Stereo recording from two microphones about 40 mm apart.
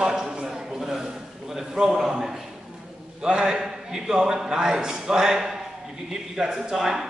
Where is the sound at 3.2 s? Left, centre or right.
Centre.